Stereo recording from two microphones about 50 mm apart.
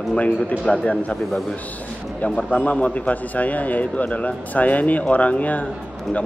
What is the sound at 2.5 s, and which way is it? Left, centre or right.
A man's voice, left.